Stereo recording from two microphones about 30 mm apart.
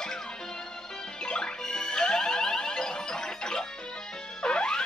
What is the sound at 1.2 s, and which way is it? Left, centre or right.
Music, left.